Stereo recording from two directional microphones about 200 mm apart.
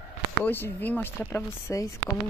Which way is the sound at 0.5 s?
10° left (ahead or behind).